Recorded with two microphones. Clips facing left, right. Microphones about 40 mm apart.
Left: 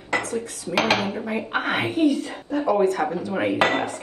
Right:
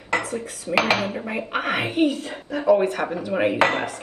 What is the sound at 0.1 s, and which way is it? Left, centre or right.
Speech, right.